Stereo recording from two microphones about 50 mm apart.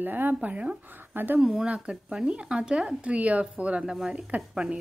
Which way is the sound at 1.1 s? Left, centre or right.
Right.